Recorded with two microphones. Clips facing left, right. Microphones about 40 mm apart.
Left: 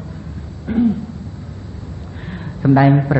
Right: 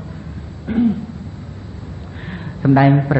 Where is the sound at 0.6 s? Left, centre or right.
Right.